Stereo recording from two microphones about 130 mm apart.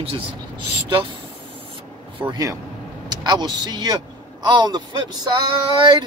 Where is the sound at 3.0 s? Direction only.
35° right (ahead or behind).